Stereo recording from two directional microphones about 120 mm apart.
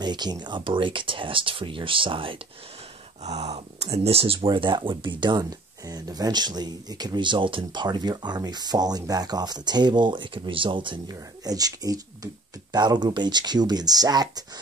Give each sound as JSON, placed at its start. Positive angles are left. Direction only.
{"t": 0.0, "sound": "speech", "side_deg": -35}
{"t": 3.3, "sound": "speech", "side_deg": -65}